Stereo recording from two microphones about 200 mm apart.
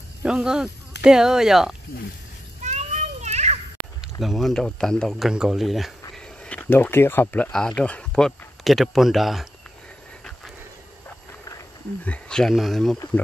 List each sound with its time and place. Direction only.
0.2 s speech: 5° right (ahead or behind)
2.6 s children playing: 35° right (ahead or behind)
4.0 s speech: centre (ahead or behind)
11.4 s speech: 10° left (ahead or behind)